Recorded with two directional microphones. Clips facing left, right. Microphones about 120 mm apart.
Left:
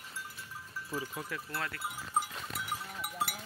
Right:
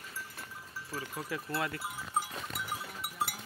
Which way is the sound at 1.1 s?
5° right (ahead or behind).